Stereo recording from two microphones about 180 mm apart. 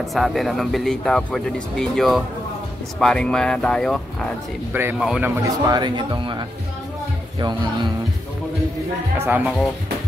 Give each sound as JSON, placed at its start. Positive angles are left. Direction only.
{"t": 0.0, "sound": "speech", "side_deg": 0}
{"t": 5.3, "sound": "speech", "side_deg": -20}